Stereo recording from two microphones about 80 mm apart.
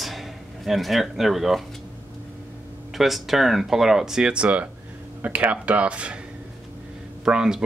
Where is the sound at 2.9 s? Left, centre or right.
Centre.